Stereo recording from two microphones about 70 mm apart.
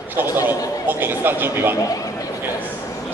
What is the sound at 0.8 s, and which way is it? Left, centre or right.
Speech, right.